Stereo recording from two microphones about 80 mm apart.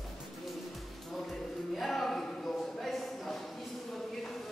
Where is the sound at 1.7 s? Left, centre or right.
Centre.